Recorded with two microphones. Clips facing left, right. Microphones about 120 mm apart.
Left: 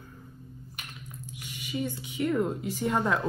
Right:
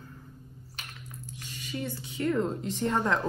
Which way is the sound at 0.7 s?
15° left (ahead or behind).